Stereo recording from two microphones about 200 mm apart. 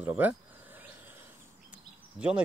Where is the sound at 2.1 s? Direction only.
5° right (ahead or behind).